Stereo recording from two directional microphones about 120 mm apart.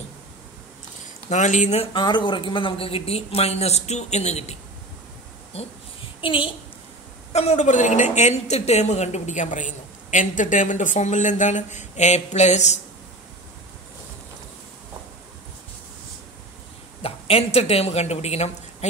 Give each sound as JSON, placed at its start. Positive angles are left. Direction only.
{"t": 1.3, "sound": "a woman's voice", "side_deg": 90}
{"t": 2.0, "sound": "speech", "side_deg": 40}
{"t": 6.2, "sound": "a woman's voice", "side_deg": 45}
{"t": 7.3, "sound": "a woman's voice", "side_deg": 75}
{"t": 17.0, "sound": "a woman's voice", "side_deg": 55}